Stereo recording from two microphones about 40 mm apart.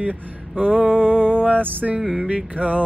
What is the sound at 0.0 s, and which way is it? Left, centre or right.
Music, right.